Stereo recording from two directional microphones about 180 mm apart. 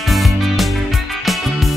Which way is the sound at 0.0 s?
Centre (ahead or behind).